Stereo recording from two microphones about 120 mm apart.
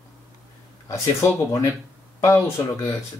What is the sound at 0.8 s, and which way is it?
Speech, 25° left (ahead or behind).